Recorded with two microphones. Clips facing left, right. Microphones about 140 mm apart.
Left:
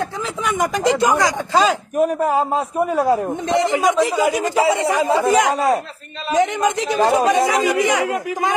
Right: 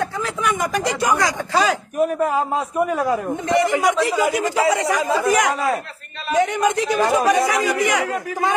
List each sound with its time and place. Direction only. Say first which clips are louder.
0.4 s a man's voice: left 2 dB; 20° left (ahead or behind)
2.0 s a man's voice: left 2 dB; 40° left (ahead or behind)
3.4 s a man's voice: even; 20° left (ahead or behind)
6.3 s a man's voice: left 1 dB; 15° left (ahead or behind)